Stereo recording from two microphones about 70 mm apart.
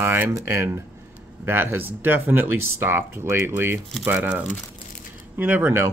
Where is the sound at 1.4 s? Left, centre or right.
Right.